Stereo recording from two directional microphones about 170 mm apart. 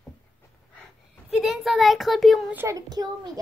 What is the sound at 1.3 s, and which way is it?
Speech, centre (ahead or behind).